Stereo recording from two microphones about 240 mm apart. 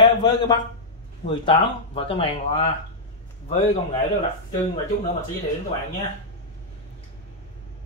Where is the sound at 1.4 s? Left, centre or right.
Left.